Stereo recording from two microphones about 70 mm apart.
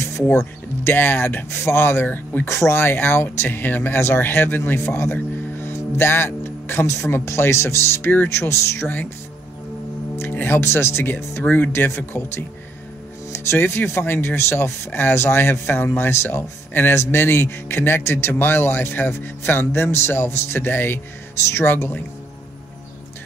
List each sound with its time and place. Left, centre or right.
0.3 s speech: left
2.4 s speech: left
10.1 s speech: left
11.4 s speech: left